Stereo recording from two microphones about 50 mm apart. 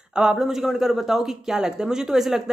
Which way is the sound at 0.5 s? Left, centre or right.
Centre.